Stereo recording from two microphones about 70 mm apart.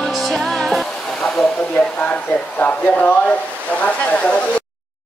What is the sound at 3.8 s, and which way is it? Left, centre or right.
Speech, left.